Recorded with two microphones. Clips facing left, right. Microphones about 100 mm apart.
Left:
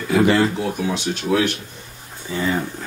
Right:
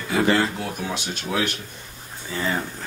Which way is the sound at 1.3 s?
Centre (ahead or behind).